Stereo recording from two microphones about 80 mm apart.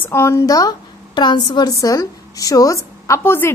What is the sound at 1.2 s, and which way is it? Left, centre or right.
Speech, left.